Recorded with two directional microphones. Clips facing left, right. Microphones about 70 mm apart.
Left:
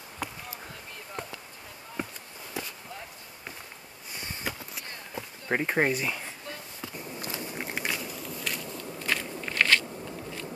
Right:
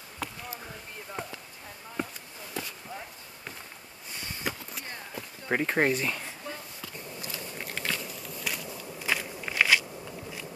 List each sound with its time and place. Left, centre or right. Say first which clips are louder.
0.2 s basketball bounce: even; centre
2.0 s a sound: right 1 dB; centre
5.2 s a sound: left 6 dB; left
5.5 s speech: even; centre
7.2 s walk: left 4 dB; left
8.0 s walk: left 1 dB; centre